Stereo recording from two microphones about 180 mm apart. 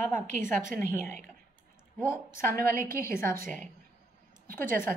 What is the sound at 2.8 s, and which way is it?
Speech, 15° left (ahead or behind).